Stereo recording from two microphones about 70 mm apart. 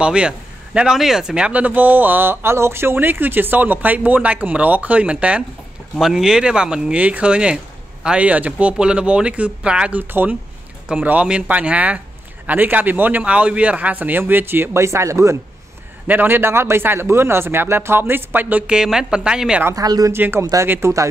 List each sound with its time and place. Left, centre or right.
0.0 s speech: centre; by 15.3 s right
16.1 s speech: right
18.7 s speech: centre
19.7 s speech: right
20.1 s speech: right